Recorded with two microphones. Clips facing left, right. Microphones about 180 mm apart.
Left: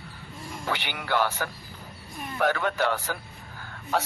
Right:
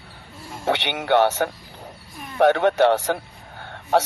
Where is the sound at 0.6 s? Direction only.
80° right.